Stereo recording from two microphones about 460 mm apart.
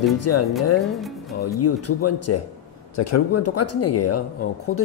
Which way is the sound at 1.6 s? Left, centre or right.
Left.